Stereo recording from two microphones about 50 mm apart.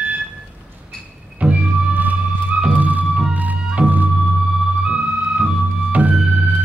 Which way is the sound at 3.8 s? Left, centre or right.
Centre.